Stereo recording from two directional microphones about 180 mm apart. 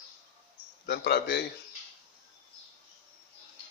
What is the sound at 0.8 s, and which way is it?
Speech, 65° left (ahead or behind).